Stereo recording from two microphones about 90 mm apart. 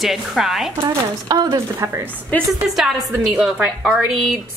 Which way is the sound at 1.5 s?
35° right (ahead or behind).